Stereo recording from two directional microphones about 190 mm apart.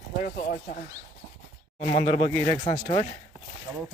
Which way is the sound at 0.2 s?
45° left (ahead or behind).